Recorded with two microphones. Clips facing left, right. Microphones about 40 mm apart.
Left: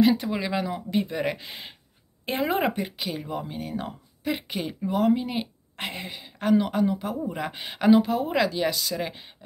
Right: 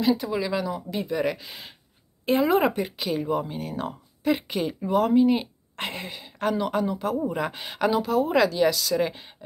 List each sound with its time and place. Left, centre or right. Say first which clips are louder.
0.0 s speech: left 2 dB; left
2.6 s speech: right 2 dB; centre
7.9 s speech: left 5 dB; left
8.3 s speech: right 4 dB; centre
8.9 s speech: right 6 dB; centre